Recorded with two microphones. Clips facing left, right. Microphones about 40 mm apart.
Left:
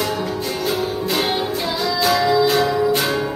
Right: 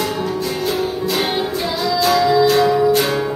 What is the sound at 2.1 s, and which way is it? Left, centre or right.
Music, centre.